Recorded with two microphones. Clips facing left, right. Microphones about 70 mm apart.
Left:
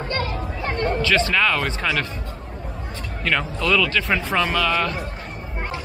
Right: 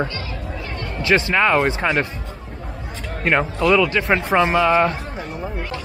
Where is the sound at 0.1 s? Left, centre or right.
Left.